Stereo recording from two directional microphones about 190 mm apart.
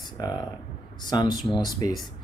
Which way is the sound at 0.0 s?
20° left (ahead or behind).